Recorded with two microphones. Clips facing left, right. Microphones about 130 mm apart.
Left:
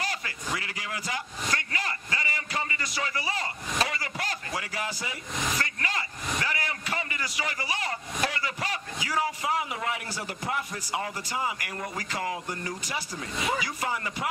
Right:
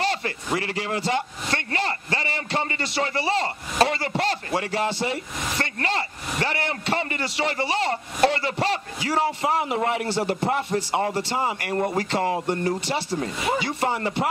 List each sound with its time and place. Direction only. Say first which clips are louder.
0.0 s a man's voice: right 8 dB; 30° right (ahead or behind)